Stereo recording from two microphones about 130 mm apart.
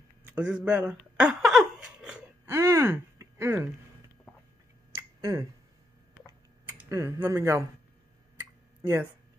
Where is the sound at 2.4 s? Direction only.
20° right (ahead or behind).